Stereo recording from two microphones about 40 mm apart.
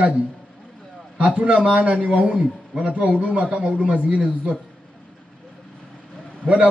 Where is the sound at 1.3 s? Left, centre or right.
Right.